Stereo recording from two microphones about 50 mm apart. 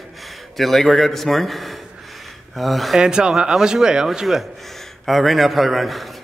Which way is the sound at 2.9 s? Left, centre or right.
Centre.